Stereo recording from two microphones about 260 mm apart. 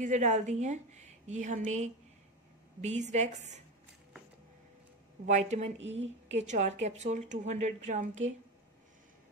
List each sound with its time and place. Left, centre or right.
0.0 s a woman's voice: right
5.2 s a woman's voice: right
5.8 s speech: right
6.4 s a woman's voice: right